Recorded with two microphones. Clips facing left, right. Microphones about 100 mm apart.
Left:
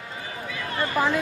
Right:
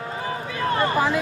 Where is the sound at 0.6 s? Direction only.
40° right (ahead or behind).